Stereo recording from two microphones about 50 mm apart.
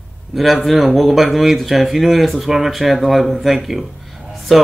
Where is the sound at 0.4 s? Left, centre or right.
Centre.